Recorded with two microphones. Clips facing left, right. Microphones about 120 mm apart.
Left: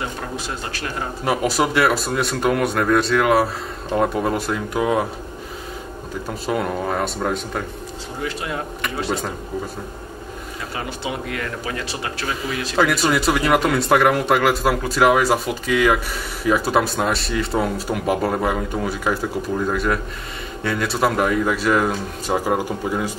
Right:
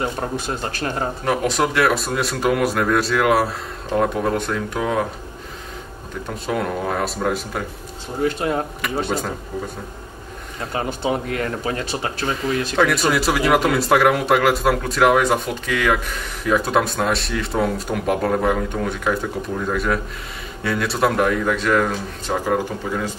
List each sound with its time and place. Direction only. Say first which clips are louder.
0.0 s speech: right 4 dB; 35° right (ahead or behind)
1.2 s speech: left 1 dB; 5° left (ahead or behind)
6.2 s speech: even; centre (ahead or behind)
8.2 s speech: right 6 dB; 45° right (ahead or behind)
9.0 s speech: left 1 dB; centre (ahead or behind)
10.9 s speech: right 6 dB; 40° right (ahead or behind)
12.7 s speech: left 1 dB; centre (ahead or behind)